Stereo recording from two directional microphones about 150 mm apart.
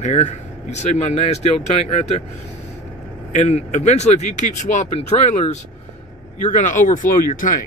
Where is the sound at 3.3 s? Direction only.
50° left (ahead or behind).